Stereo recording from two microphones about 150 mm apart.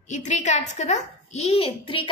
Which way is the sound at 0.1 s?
50° left (ahead or behind).